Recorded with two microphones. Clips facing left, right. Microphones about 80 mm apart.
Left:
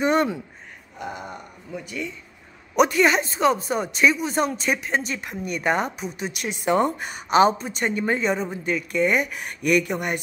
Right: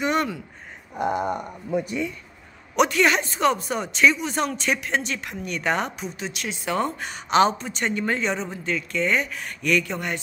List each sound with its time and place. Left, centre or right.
0.0 s speech: left
0.9 s a sound: right
2.7 s speech: centre
6.6 s speech: left
7.3 s speech: centre